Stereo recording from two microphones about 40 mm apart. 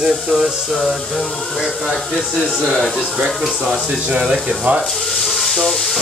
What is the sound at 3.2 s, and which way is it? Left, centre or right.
Speech, centre.